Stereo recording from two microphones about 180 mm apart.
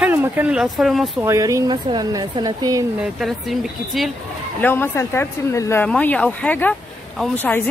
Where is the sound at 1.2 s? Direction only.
15° right (ahead or behind).